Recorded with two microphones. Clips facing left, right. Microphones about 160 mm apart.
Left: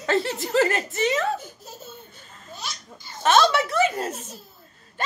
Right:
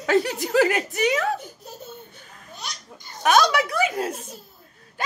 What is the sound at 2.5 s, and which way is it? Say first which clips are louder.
Baby laughter: left 1 dB; centre (ahead or behind).